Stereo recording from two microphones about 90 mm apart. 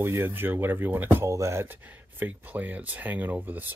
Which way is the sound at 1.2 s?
35° right (ahead or behind).